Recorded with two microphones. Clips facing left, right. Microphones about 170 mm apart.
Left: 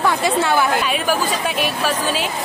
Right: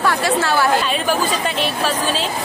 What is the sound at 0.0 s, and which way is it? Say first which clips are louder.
A woman's voice: even; 20° left (ahead or behind).